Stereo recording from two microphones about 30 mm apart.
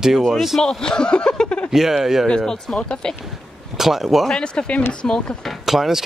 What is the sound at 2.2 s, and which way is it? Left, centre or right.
Speech, left.